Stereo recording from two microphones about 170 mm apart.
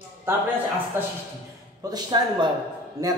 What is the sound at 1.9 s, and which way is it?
Speech, 25° right (ahead or behind).